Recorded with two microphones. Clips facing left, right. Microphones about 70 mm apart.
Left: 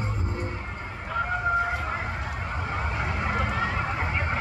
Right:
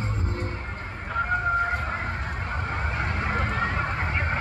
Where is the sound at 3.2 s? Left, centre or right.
Centre.